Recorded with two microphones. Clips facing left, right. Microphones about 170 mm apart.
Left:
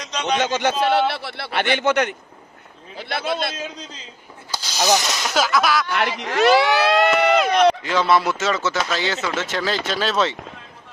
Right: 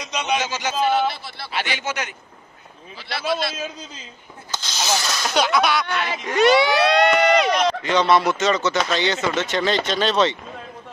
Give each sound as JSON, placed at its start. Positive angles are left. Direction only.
{"t": 0.0, "sound": "speech", "side_deg": -10}
{"t": 0.4, "sound": "speech", "side_deg": 55}
{"t": 4.5, "sound": "snake", "side_deg": 10}
{"t": 4.9, "sound": "speech", "side_deg": 20}
{"t": 5.2, "sound": "speech", "side_deg": 0}
{"t": 5.9, "sound": "speech", "side_deg": 70}
{"t": 6.3, "sound": "speech", "side_deg": 0}